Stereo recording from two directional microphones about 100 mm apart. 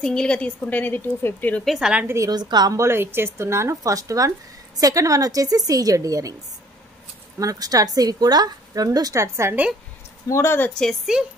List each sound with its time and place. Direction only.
0.0 s a woman's voice: 10° left (ahead or behind)
1.6 s a woman's voice: 5° right (ahead or behind)
2.0 s a woman's voice: 30° right (ahead or behind)
2.3 s a woman's voice: 45° right (ahead or behind)
2.8 s a woman's voice: 25° right (ahead or behind)
7.3 s a woman's voice: 35° right (ahead or behind)
10.2 s speech: 30° left (ahead or behind)
10.7 s a woman's voice: 5° left (ahead or behind)